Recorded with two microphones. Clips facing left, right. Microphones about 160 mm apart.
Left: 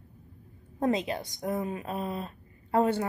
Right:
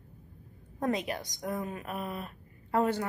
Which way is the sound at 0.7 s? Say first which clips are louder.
Left 3 dB; 25° left (ahead or behind).